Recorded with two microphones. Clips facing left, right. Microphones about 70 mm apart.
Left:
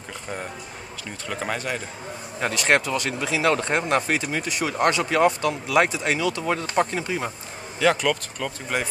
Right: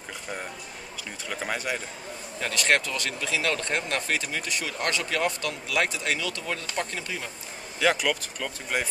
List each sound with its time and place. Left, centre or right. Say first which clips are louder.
1.3 s speech: left 3 dB; centre
2.4 s speech: left 4 dB; left
7.8 s speech: left 3 dB; centre